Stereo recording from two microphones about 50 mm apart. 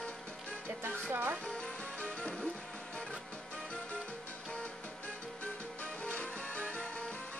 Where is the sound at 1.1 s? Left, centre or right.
Right.